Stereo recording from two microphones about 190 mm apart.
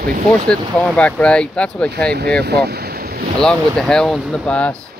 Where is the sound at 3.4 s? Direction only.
5° left (ahead or behind).